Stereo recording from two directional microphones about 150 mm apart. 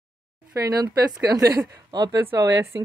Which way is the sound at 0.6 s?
25° right (ahead or behind).